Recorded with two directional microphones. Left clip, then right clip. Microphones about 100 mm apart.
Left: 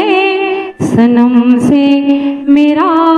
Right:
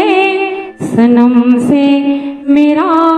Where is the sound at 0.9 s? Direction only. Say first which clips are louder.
Right 1 dB; 30° left (ahead or behind).